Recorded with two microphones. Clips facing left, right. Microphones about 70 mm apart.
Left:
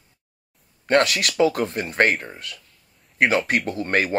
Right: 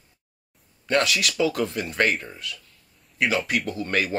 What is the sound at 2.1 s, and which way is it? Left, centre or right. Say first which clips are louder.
Speech: left 2 dB; left.